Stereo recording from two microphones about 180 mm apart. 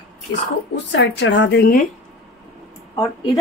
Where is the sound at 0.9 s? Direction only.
80° left; by 1.8 s 60° left (ahead or behind).